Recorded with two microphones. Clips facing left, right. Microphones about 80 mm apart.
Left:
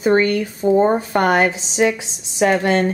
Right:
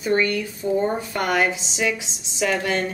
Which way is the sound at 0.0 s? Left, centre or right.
Left.